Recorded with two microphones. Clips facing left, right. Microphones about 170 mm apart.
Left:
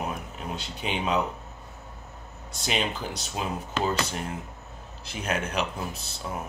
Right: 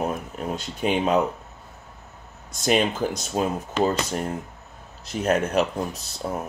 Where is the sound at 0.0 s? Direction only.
45° right (ahead or behind).